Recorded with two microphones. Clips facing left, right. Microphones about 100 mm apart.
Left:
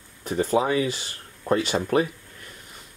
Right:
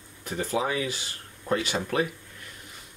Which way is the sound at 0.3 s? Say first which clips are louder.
Left 6 dB; 40° left (ahead or behind).